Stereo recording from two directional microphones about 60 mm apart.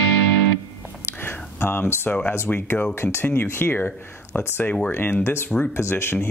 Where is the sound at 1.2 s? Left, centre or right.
Left.